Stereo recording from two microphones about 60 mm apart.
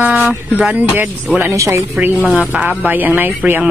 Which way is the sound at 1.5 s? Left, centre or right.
Right.